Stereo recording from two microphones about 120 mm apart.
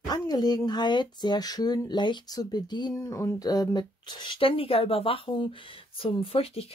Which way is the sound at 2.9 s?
25° left (ahead or behind).